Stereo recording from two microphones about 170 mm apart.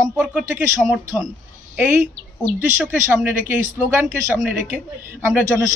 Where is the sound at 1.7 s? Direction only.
10° right (ahead or behind).